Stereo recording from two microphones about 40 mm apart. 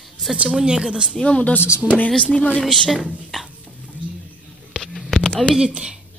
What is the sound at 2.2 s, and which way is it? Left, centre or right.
Speech, centre.